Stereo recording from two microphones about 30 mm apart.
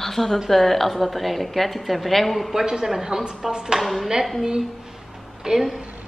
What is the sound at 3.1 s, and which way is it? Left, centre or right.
Speech, right.